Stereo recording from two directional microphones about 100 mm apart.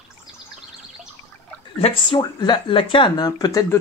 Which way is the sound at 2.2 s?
45° left (ahead or behind).